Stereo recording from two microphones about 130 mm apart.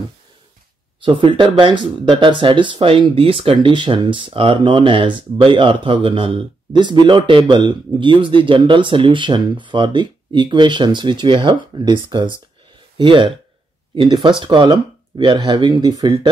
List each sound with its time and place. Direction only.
1.0 s speech: 40° right (ahead or behind)